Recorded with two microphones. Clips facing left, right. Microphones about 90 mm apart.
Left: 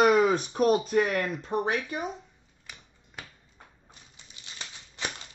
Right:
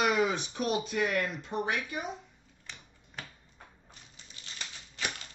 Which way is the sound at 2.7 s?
10° left (ahead or behind).